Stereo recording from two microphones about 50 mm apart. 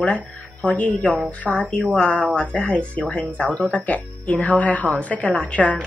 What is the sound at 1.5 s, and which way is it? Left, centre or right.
Speech, centre.